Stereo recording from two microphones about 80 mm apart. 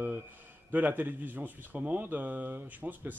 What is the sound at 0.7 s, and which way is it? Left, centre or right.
Speech, right.